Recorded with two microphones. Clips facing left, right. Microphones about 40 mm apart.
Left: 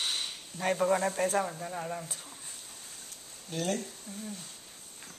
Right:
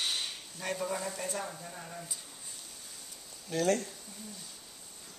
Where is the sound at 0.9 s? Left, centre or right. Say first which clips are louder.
Left 8 dB; left.